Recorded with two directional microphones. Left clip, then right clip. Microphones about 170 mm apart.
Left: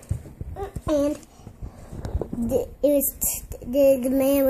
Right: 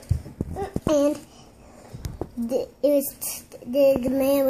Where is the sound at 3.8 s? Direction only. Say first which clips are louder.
Left 1 dB; 65° left (ahead or behind).